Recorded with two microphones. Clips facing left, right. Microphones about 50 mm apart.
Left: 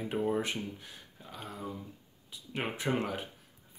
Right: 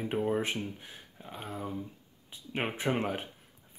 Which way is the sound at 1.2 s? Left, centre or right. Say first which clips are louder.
Right 3 dB; right.